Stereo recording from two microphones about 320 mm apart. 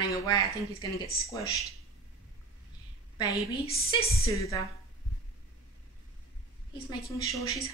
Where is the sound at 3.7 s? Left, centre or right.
Left.